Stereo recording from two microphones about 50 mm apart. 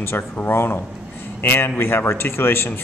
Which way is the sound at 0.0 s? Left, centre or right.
Left.